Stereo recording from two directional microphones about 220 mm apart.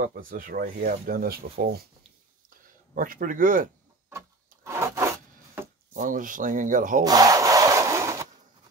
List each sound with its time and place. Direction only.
0.0 s speech: 40° right (ahead or behind)
4.6 s rub: 10° right (ahead or behind)
5.9 s speech: 35° right (ahead or behind)
7.1 s sawing: 15° right (ahead or behind)